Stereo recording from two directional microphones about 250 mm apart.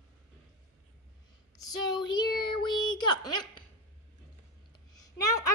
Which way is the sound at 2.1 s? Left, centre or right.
Centre.